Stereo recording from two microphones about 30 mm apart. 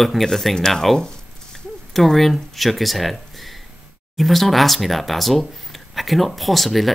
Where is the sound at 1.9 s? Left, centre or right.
Centre.